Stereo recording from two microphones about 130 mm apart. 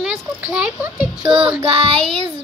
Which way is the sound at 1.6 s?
45° right (ahead or behind).